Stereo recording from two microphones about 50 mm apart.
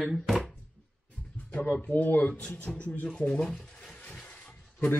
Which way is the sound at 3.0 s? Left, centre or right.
Centre.